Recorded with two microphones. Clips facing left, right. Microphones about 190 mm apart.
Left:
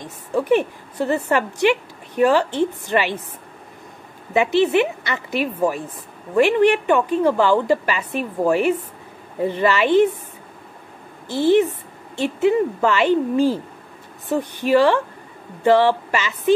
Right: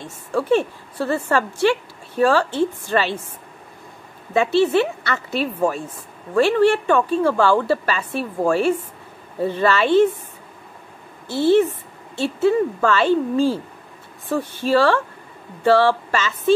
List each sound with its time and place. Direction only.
0.0 s a woman's voice: 15° left (ahead or behind)
4.3 s a woman's voice: 15° left (ahead or behind)
11.2 s a woman's voice: 15° left (ahead or behind)